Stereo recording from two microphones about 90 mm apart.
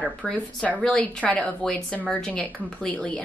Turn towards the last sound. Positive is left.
turn(degrees=15)  # may be behind; listen again after turning